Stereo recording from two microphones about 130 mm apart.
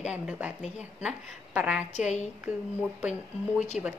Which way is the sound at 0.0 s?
10° right (ahead or behind).